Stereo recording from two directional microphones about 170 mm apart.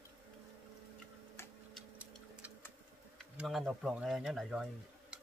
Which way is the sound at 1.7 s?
10° right (ahead or behind).